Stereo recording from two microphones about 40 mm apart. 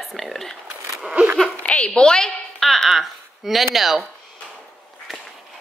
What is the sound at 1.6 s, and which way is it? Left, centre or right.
Speech, left.